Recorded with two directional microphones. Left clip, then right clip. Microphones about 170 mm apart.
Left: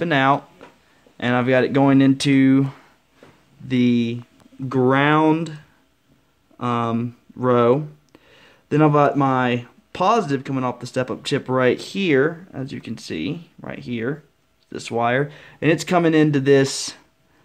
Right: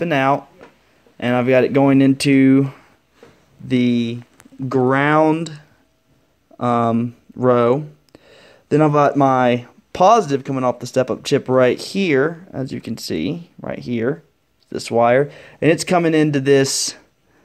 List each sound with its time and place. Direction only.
0.0 s speech: centre (ahead or behind); by 17.0 s 20° right (ahead or behind)